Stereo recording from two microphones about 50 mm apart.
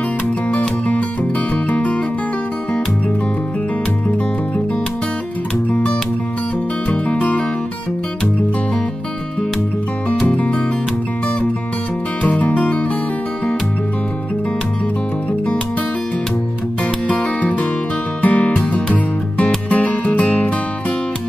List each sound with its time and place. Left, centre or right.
0.5 s music: left
6.9 s music: left
10.3 s music: left
12.2 s music: left
17.1 s music: left